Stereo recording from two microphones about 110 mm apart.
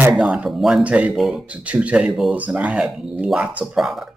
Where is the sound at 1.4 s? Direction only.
10° right (ahead or behind).